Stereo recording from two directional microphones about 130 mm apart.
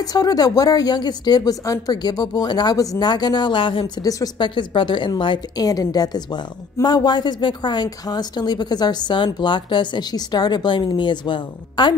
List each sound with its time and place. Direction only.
0.0 s a woman's voice: 30° left (ahead or behind)
4.0 s a woman's voice: 30° left (ahead or behind)